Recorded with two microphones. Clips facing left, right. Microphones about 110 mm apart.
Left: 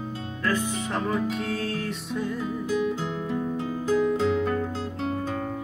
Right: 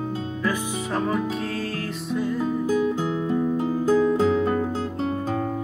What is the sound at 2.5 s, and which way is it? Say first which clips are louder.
Music: right 4 dB; 40° right (ahead or behind).